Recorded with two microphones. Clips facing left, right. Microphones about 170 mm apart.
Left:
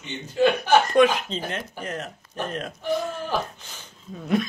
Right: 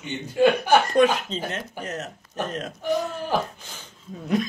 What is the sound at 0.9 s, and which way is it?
A man's voice, 40° right (ahead or behind).